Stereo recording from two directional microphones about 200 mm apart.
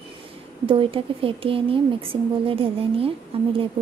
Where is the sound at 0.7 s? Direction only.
25° right (ahead or behind).